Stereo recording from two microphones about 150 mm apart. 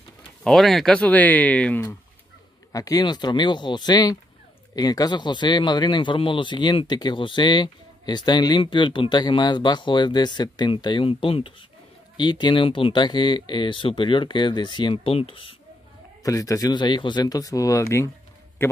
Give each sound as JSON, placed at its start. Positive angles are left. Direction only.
{"t": 0.4, "sound": "speech", "side_deg": 0}
{"t": 2.7, "sound": "speech", "side_deg": 25}
{"t": 16.2, "sound": "speech", "side_deg": 20}
{"t": 18.6, "sound": "a sound", "side_deg": 15}